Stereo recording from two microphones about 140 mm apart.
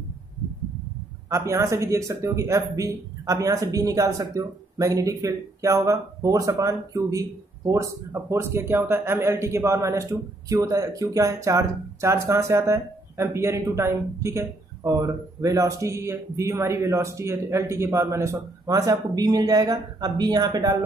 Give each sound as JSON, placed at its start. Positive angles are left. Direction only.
{"t": 1.3, "sound": "speech", "side_deg": -20}